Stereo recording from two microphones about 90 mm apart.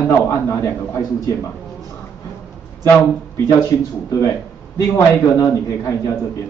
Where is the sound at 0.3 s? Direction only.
30° left (ahead or behind).